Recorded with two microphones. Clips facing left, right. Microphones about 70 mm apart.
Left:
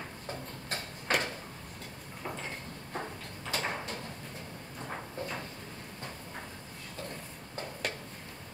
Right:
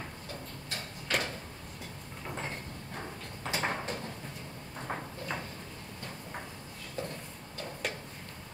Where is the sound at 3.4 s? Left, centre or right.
Right.